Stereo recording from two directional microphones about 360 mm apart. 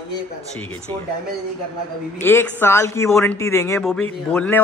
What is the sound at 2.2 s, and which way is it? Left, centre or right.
A man's voice, centre.